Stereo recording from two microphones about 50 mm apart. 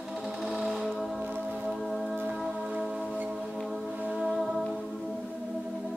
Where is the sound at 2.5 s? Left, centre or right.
Centre.